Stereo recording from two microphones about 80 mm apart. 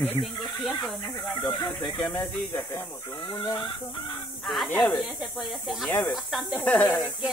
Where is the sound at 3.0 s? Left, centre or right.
Left.